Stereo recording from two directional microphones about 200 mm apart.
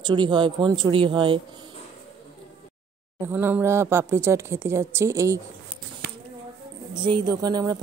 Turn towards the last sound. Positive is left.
turn(degrees=-20)  # may be behind; listen again after turning